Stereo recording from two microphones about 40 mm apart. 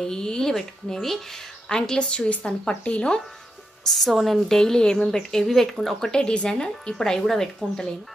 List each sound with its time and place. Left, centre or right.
0.0 s speech: centre
1.7 s speech: centre
3.8 s a woman's voice: centre
4.6 s speech: centre
6.2 s speech: left